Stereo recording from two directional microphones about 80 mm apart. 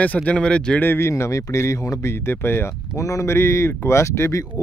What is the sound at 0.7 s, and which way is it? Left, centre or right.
Speech, left.